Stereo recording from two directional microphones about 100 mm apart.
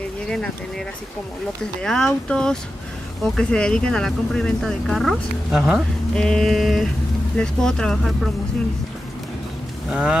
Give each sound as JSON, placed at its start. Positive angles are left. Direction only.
{"t": 0.3, "sound": "speech", "side_deg": 5}
{"t": 6.1, "sound": "speech", "side_deg": 5}
{"t": 9.8, "sound": "speech", "side_deg": -10}